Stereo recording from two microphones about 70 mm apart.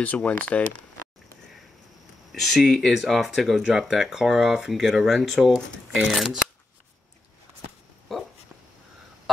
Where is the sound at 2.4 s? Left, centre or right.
Centre.